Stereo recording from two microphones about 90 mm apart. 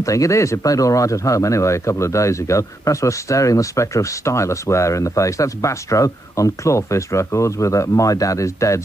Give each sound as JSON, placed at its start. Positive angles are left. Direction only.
{"t": 0.0, "sound": "speech", "side_deg": 35}